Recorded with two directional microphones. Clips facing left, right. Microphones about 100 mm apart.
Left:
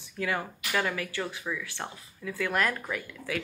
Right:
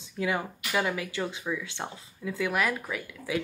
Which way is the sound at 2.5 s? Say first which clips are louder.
Even; 5° right (ahead or behind).